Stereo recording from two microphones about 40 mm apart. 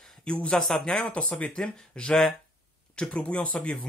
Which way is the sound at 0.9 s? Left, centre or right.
Left.